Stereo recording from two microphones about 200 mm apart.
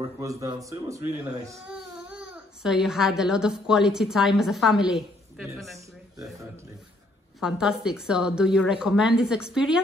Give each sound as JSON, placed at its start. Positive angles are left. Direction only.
{"t": 0.2, "sound": "speech", "side_deg": -15}
{"t": 7.3, "sound": "a woman's voice", "side_deg": -5}